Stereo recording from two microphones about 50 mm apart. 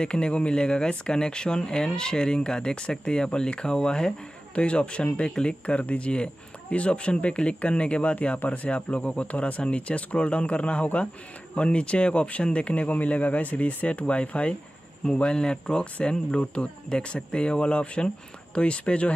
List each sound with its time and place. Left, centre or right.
0.0 s speech: centre